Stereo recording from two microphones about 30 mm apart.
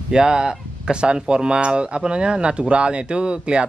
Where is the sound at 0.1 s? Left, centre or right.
Right.